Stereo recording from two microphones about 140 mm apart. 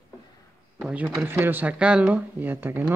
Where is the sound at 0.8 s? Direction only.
10° right (ahead or behind).